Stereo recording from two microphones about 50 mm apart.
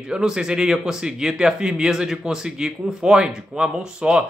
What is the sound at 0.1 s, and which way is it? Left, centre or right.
A man's voice, centre.